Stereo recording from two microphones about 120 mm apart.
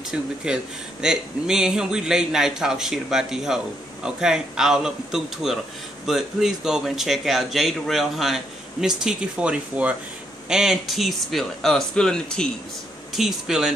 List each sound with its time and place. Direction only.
0.1 s a man's voice: 5° right (ahead or behind)